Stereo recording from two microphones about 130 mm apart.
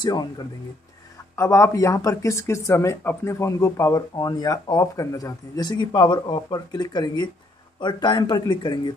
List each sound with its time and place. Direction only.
0.0 s speech: 30° left (ahead or behind)
1.3 s speech: 20° left (ahead or behind)